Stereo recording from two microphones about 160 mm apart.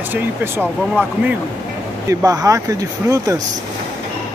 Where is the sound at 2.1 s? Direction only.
25° right (ahead or behind).